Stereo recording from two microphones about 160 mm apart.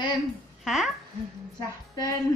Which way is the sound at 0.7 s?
Centre (ahead or behind).